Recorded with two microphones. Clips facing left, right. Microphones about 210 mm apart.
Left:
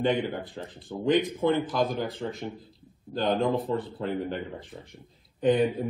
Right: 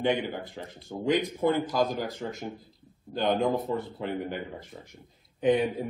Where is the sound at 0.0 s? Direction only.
15° right (ahead or behind).